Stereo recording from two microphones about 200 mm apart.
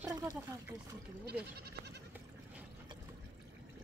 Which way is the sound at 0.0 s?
15° right (ahead or behind).